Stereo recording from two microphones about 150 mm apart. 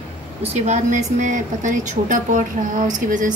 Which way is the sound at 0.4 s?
45° right (ahead or behind).